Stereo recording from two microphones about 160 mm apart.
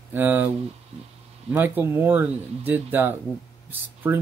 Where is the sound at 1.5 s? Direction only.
10° right (ahead or behind).